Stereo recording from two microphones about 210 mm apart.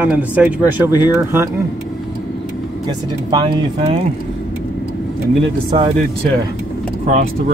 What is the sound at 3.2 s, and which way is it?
Speech, 25° right (ahead or behind).